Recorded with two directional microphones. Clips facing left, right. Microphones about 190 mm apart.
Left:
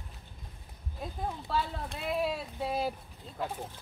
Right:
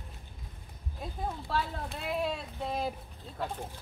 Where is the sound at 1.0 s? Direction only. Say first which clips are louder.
Even; centre (ahead or behind).